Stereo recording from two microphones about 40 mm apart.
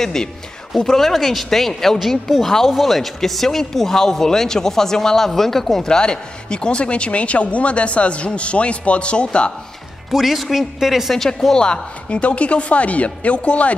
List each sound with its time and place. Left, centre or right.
0.0 s speech: centre
2.0 s speech: centre
5.9 s a man's voice: centre
10.1 s speech: centre
11.1 s speech: centre
11.6 s a woman's voice: left